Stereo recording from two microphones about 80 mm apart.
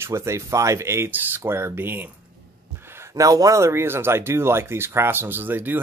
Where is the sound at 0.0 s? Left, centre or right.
Right.